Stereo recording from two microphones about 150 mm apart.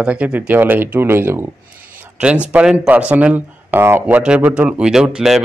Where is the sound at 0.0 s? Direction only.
10° right (ahead or behind).